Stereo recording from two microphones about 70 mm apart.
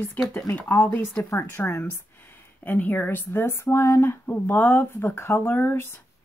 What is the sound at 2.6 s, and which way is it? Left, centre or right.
A woman's voice, left.